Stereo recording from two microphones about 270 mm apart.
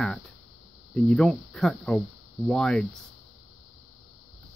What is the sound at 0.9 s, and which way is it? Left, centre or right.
Speech, centre.